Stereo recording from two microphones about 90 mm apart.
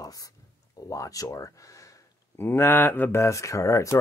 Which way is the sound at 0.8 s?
40° left (ahead or behind).